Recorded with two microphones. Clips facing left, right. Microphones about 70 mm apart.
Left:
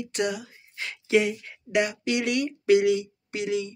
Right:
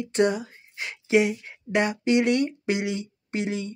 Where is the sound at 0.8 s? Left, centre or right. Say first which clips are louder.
Right 1 dB; centre.